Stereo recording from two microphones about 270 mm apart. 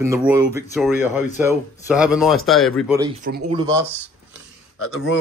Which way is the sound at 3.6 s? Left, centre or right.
Centre.